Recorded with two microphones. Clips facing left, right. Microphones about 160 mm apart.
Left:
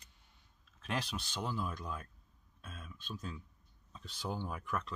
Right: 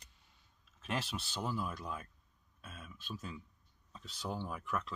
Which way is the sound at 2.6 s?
5° right (ahead or behind).